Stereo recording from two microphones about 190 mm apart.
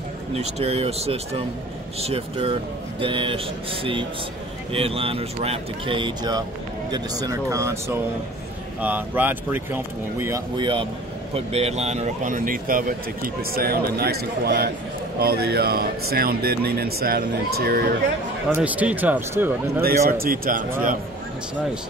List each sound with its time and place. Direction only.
0.3 s speech: 35° right (ahead or behind); by 7.7 s 15° right (ahead or behind)
8.8 s speech: 10° right (ahead or behind)
10.6 s speech: 25° right (ahead or behind); by 17.9 s 55° right (ahead or behind)
18.5 s speech: 5° right (ahead or behind)
20.1 s speech: 50° right (ahead or behind)